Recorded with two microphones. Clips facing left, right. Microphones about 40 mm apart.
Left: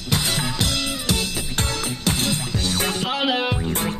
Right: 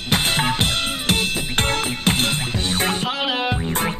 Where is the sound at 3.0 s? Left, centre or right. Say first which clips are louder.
Even; centre.